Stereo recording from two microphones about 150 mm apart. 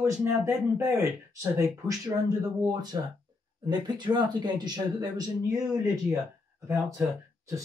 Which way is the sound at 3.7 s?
30° right (ahead or behind).